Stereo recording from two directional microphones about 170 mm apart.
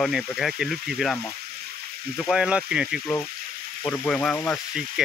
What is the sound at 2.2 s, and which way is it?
Speech, 5° right (ahead or behind).